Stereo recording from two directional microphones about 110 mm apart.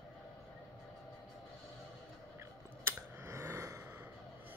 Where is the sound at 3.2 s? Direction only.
25° right (ahead or behind).